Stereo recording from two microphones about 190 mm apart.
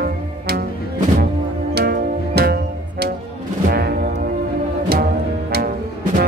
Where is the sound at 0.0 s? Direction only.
55° right (ahead or behind).